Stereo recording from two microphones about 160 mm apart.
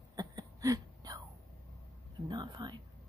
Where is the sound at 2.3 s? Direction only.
25° right (ahead or behind).